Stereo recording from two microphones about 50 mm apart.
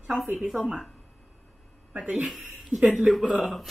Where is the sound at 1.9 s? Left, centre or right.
Right.